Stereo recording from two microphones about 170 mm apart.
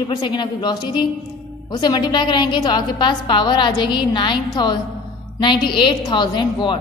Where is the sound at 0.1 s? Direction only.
25° left (ahead or behind).